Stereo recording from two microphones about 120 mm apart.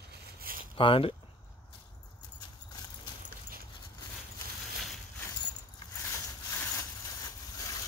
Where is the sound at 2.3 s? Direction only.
35° left (ahead or behind).